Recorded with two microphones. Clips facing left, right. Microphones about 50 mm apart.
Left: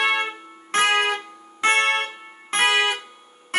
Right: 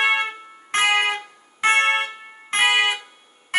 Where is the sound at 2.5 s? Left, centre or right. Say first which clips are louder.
Right 1 dB; centre.